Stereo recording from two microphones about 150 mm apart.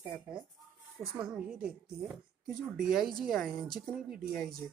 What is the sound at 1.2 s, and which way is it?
Speech, 5° right (ahead or behind).